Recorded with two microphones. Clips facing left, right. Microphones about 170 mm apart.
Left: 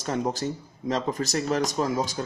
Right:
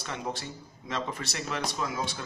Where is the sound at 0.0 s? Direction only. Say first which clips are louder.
Left 8 dB; 40° left (ahead or behind).